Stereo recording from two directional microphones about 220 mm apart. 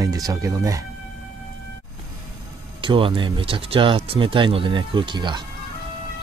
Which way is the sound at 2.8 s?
25° right (ahead or behind).